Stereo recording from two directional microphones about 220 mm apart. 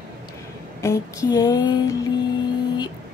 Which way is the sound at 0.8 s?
15° left (ahead or behind).